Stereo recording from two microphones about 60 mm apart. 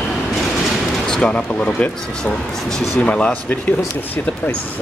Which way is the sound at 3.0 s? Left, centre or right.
Left.